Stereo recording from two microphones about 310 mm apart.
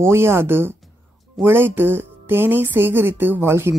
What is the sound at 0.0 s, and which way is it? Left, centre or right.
Speech, centre.